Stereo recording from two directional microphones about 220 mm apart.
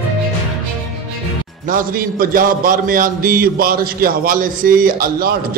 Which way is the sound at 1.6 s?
40° right (ahead or behind).